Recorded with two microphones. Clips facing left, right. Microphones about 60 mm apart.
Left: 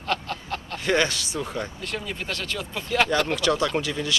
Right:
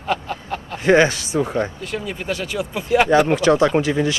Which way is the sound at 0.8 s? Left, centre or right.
Right.